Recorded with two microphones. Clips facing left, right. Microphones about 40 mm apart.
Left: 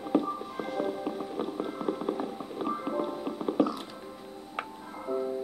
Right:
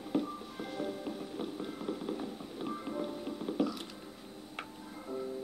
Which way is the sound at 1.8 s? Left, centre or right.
Left.